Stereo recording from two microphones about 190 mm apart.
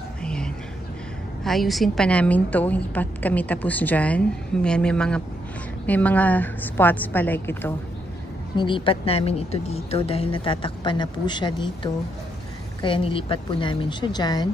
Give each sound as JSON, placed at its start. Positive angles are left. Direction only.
{"t": 0.2, "sound": "whispering", "side_deg": 5}
{"t": 1.4, "sound": "a woman's voice", "side_deg": 0}
{"t": 8.5, "sound": "a woman's voice", "side_deg": 25}
{"t": 12.8, "sound": "a woman's voice", "side_deg": 25}